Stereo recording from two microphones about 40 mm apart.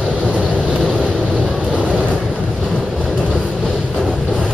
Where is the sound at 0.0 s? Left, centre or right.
Right.